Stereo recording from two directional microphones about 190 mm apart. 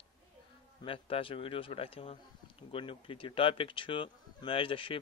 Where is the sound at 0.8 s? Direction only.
30° left (ahead or behind).